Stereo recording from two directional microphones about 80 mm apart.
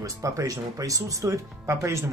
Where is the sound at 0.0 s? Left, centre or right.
Right.